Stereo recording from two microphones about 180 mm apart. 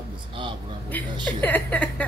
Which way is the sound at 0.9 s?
10° left (ahead or behind).